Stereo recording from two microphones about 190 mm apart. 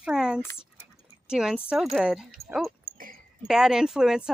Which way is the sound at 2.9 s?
50° right (ahead or behind).